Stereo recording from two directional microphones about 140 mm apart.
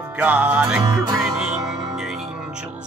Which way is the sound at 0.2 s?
10° right (ahead or behind).